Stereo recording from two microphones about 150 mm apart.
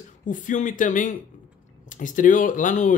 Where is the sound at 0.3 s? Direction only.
60° left (ahead or behind).